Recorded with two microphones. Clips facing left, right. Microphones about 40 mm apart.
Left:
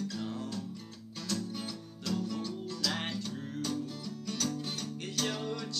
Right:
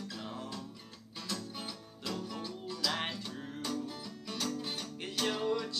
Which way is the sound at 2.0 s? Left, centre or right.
Centre.